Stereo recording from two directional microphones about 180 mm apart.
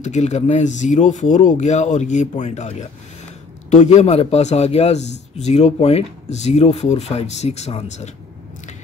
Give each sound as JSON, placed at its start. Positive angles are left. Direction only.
{"t": 0.0, "sound": "speech", "side_deg": 40}